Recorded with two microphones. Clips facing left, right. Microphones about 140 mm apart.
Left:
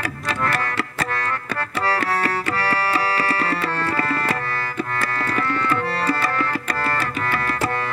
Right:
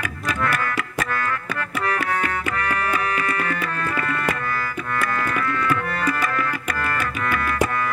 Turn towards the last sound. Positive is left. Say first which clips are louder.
# even
turn(degrees=35)  # may be behind; listen again after turning